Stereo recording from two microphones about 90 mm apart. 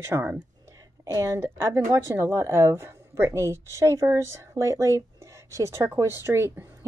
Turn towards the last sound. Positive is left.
turn(degrees=-25)  # may be behind; listen again after turning